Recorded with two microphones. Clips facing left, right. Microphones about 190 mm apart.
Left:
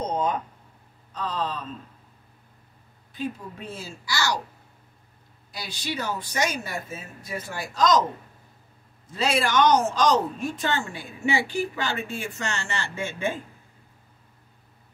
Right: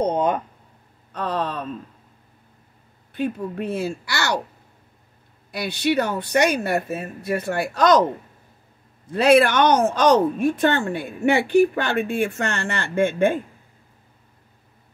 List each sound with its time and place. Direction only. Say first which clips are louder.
0.0 s a sound: right 6 dB; 60° right (ahead or behind)
3.1 s speech: right 7 dB; 60° right (ahead or behind)
5.5 s speech: right 11 dB; 65° right (ahead or behind)
9.1 s speech: right 8 dB; 60° right (ahead or behind)